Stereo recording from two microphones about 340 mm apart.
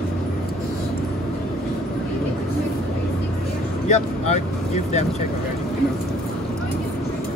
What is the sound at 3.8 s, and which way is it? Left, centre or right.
Vehicle, left.